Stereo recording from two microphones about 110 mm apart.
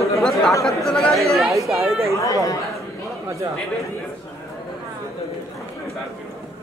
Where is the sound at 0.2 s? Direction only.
5° left (ahead or behind).